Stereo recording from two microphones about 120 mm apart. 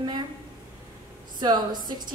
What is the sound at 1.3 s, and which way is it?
Speech, 35° right (ahead or behind).